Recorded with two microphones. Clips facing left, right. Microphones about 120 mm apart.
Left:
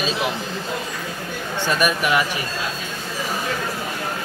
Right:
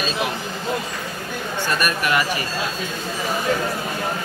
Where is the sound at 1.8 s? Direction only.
15° left (ahead or behind).